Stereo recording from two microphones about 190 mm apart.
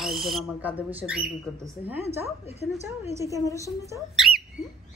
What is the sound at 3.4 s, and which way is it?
Speech, 15° left (ahead or behind).